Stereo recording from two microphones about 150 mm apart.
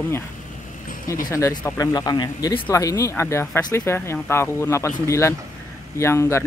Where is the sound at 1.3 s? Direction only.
20° left (ahead or behind).